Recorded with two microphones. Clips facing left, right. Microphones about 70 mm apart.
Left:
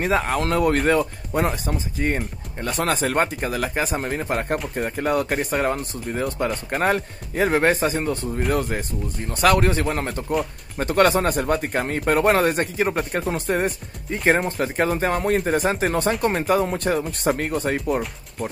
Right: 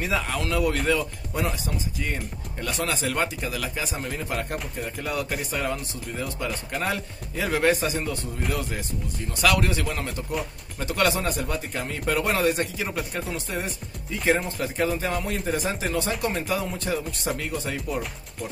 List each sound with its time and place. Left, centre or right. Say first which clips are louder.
0.0 s speech: left 6 dB; left